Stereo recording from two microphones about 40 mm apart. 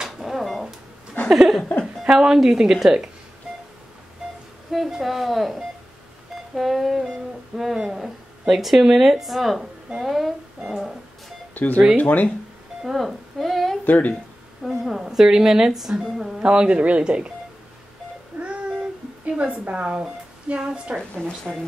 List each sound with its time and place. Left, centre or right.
0.0 s a sound: centre
2.0 s a woman's voice: centre
4.6 s a sound: centre
5.0 s speech: centre
6.5 s music: centre
7.5 s a woman's voice: centre
11.5 s speech: left
12.9 s a sound: centre
13.8 s speech: left
14.6 s a woman's voice: centre
16.3 s speech: right
18.4 s child singing: right
19.7 s speech: right